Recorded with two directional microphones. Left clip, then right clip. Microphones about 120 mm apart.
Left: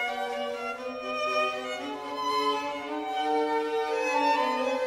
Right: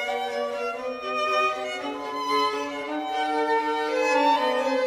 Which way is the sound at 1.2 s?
25° right (ahead or behind).